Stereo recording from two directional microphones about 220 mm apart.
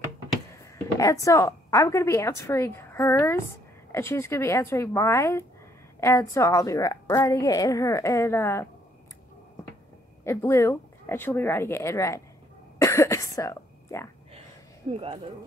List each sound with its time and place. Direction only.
0.9 s a woman's voice: 15° left (ahead or behind)
10.2 s a woman's voice: 10° left (ahead or behind)
12.7 s cough: 15° left (ahead or behind)
14.8 s speech: 30° right (ahead or behind)